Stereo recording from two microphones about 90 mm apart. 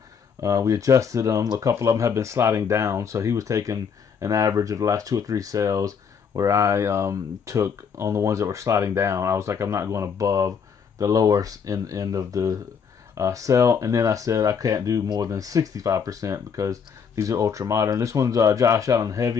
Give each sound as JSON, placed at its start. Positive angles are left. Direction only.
{"t": 0.4, "sound": "speech", "side_deg": -35}